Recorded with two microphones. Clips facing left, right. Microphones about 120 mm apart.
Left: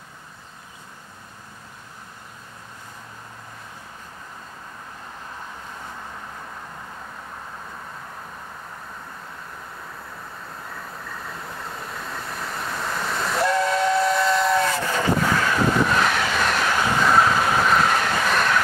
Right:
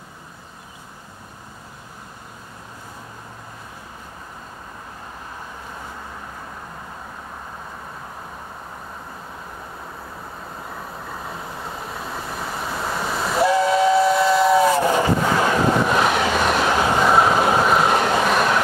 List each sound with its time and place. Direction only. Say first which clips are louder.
11.2 s vehicle: right 3 dB; 5° right (ahead or behind)
14.9 s vehicle: right 3 dB; 25° right (ahead or behind)
16.1 s train: right 4 dB; 30° right (ahead or behind)